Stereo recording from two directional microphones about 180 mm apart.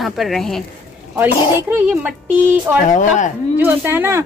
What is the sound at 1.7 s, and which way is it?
Speech, 10° right (ahead or behind).